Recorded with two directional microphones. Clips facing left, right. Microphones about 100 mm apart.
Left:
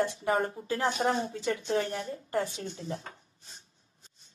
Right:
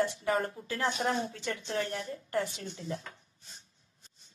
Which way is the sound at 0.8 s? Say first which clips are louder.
Left 2 dB; 35° left (ahead or behind).